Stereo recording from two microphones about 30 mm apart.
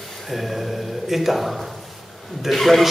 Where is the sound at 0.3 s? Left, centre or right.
Centre.